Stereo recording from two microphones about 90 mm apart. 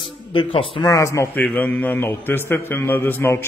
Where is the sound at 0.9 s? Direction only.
35° left (ahead or behind).